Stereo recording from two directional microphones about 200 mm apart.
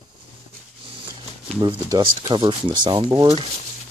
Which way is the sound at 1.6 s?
25° right (ahead or behind).